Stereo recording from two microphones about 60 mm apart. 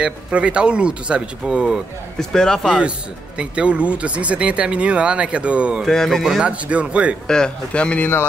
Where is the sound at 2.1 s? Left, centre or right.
Centre.